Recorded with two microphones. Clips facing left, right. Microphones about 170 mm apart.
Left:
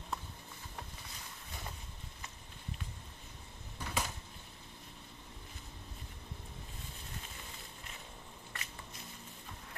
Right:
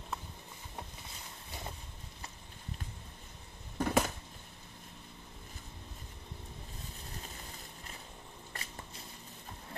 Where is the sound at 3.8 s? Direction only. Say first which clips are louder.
Right 10 dB; 55° right (ahead or behind).